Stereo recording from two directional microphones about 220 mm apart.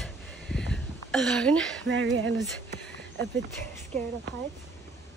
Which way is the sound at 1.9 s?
55° right (ahead or behind).